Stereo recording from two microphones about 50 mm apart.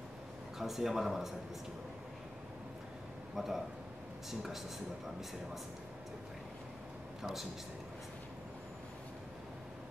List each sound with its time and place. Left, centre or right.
0.6 s speech: centre
3.3 s speech: centre
7.2 s speech: centre